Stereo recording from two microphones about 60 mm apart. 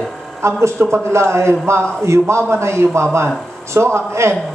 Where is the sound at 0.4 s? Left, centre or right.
Right.